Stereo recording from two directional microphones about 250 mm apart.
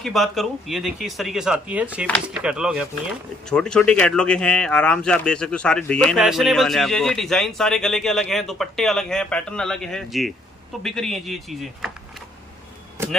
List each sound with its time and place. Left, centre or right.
0.0 s speech: centre